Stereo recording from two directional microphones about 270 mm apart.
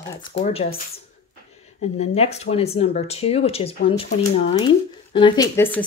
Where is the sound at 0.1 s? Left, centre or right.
Centre.